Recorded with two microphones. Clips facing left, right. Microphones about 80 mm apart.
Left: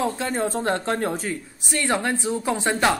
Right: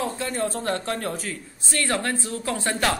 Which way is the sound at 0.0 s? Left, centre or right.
Left.